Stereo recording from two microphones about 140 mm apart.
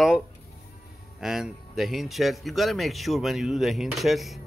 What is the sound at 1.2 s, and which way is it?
A man's voice, 5° right (ahead or behind).